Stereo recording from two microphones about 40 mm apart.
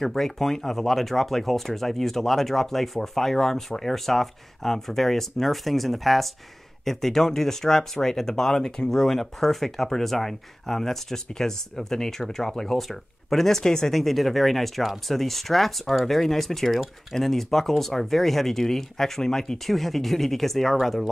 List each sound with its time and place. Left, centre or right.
0.0 s speech: centre